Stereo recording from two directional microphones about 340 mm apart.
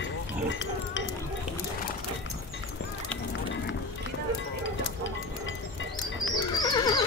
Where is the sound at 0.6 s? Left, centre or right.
Left.